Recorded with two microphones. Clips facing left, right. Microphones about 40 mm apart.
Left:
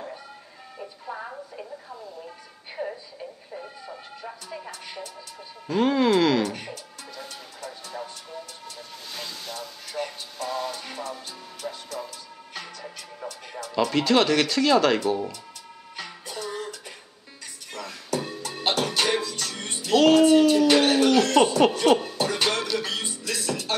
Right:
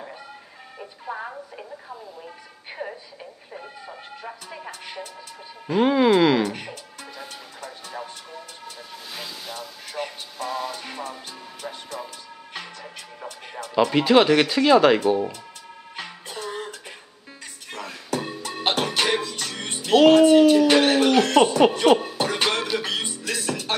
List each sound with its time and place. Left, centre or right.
0.7 s telephone: centre
5.7 s music: centre
13.6 s speech: centre
16.0 s music: right
17.7 s music: centre
21.7 s speech: centre
22.1 s music: centre